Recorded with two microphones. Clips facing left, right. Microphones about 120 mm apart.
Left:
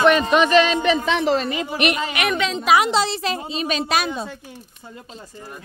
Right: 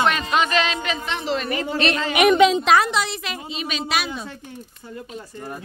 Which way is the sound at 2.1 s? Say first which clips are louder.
Right 8 dB; 20° right (ahead or behind).